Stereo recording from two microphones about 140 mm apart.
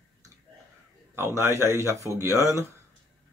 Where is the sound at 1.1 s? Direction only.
20° right (ahead or behind).